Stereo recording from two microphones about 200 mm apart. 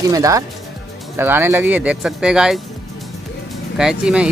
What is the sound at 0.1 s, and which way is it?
Speech, 15° right (ahead or behind).